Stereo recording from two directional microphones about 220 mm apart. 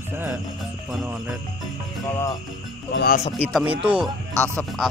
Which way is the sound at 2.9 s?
45° left (ahead or behind).